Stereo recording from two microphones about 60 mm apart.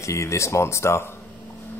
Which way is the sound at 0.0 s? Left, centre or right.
Left.